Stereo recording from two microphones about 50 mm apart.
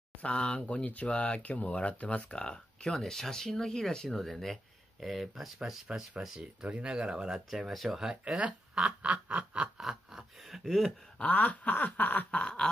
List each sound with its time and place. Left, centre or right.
0.2 s speech: left; by 5.9 s centre
5.9 s snicker: centre
6.4 s speech: centre
7.6 s speech: centre
8.0 s speech: centre
8.8 s snicker: right
9.8 s speech: centre
10.6 s speech: centre
11.2 s snicker: left
12.3 s speech: centre